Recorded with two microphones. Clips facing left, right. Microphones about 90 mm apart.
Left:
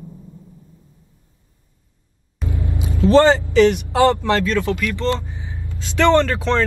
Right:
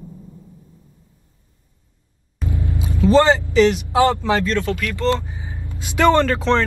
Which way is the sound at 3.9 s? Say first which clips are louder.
Left 1 dB; 15° right (ahead or behind).